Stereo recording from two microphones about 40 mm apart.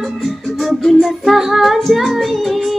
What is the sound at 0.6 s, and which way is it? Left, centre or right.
Music, centre.